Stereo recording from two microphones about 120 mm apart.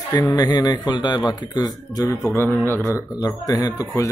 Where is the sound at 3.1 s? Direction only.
30° left (ahead or behind).